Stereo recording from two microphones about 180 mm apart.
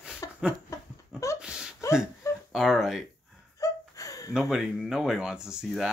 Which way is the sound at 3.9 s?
20° left (ahead or behind).